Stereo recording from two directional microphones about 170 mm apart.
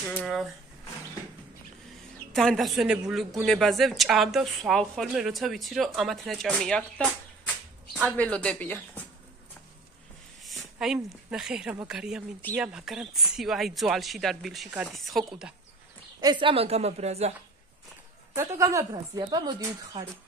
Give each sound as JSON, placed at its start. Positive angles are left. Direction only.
{"t": 0.1, "sound": "speech", "side_deg": 5}
{"t": 2.3, "sound": "speech", "side_deg": 0}
{"t": 10.4, "sound": "speech", "side_deg": 0}
{"t": 16.2, "sound": "a woman's voice", "side_deg": -25}
{"t": 18.3, "sound": "a woman's voice", "side_deg": -15}